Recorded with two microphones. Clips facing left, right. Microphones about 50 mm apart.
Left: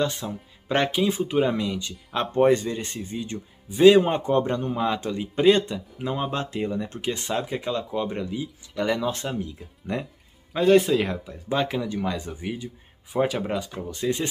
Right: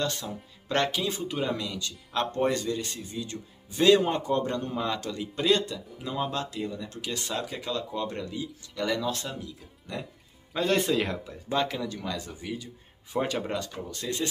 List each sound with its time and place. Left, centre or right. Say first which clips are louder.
0.0 s speech: left 5 dB; centre
3.7 s speech: left 6 dB; centre
10.5 s speech: left 7 dB; centre; by 12.6 s left
13.1 s speech: left 5 dB; centre
13.7 s speech: left 7 dB; left